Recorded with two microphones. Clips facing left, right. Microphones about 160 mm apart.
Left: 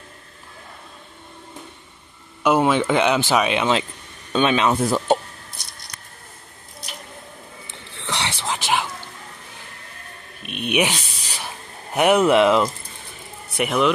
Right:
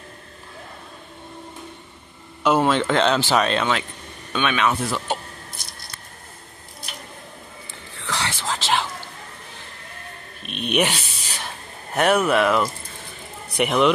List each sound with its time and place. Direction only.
2.4 s speech: 10° left (ahead or behind)
4.3 s speech: 30° left (ahead or behind)
4.8 s speech: 40° left (ahead or behind)
8.0 s whispering: 20° left (ahead or behind)
10.7 s a sound: 10° left (ahead or behind)
13.6 s speech: centre (ahead or behind)